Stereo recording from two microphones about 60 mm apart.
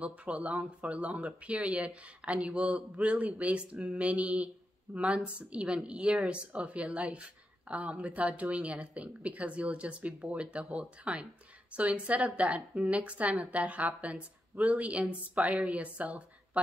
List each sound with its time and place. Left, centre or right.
0.0 s speech: right